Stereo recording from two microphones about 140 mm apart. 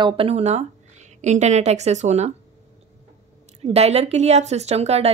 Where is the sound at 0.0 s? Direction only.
40° right (ahead or behind).